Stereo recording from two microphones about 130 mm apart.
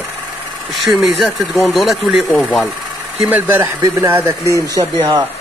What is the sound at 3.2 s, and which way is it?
Speech, 15° right (ahead or behind).